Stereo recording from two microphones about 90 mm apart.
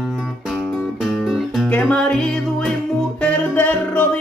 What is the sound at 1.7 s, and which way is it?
Music, 15° left (ahead or behind).